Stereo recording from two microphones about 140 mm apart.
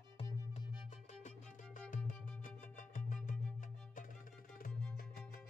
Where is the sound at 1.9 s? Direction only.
75° left (ahead or behind).